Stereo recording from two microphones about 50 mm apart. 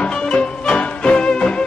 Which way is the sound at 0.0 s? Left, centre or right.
Centre.